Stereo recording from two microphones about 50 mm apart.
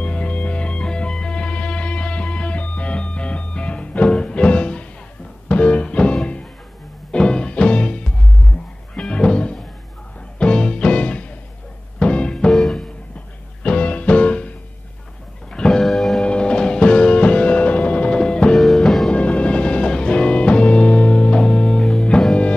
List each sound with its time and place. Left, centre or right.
0.0 s music: left
12.5 s music: centre
13.6 s music: left
15.5 s music: centre
15.8 s music: centre
16.2 s music: centre
18.8 s music: centre
19.0 s music: left